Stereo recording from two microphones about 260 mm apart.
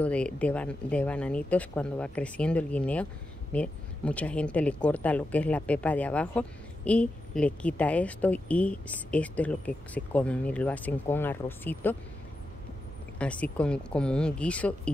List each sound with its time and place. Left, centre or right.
0.0 s speech: centre
13.2 s speech: centre